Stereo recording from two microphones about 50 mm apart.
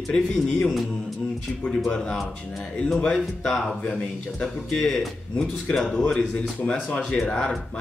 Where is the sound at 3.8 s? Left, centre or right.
Left.